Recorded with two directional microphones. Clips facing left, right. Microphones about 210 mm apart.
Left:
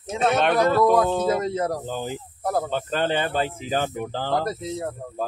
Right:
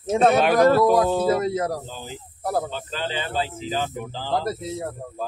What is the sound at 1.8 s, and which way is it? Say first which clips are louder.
Speech: left 7 dB; 55° left (ahead or behind).